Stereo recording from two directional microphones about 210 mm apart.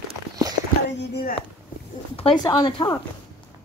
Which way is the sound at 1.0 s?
50° left (ahead or behind).